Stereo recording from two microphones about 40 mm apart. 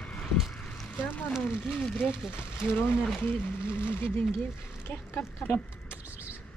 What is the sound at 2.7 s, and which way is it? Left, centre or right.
Speech, left.